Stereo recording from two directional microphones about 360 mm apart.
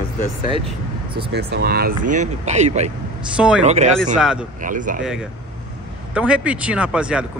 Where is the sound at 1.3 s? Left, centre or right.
Right.